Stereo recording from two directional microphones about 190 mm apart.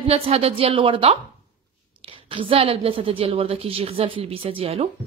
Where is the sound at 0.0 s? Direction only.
30° right (ahead or behind).